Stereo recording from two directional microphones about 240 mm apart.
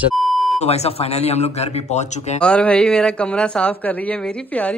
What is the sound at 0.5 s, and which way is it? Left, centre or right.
Speech, left.